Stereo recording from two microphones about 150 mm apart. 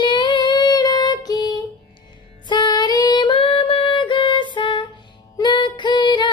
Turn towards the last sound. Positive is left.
turn(degrees=30)  # may be behind; listen again after turning